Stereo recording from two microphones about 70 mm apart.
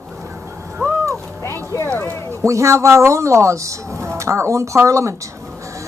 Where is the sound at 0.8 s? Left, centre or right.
Right.